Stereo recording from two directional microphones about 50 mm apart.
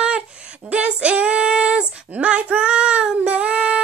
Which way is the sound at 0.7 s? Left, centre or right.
Right.